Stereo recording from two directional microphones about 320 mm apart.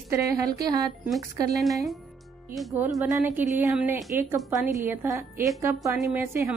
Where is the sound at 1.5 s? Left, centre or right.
Centre.